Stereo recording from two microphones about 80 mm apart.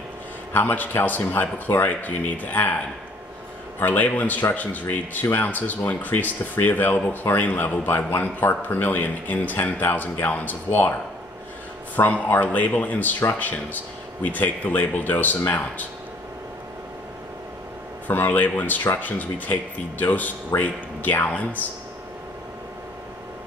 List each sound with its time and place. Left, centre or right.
0.5 s speech: left
3.8 s speech: left
18.0 s speech: left